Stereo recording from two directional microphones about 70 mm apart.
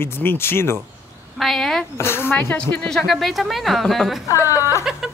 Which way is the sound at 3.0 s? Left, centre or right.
Centre.